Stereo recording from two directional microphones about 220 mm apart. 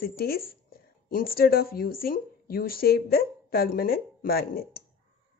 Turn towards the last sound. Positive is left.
turn(degrees=45)  # may be behind; listen again after turning